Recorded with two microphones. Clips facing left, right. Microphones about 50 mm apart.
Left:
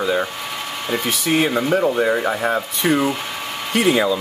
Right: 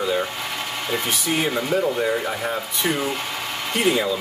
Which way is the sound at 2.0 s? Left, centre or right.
Left.